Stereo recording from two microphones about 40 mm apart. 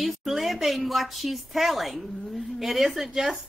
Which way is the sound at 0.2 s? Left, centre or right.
Centre.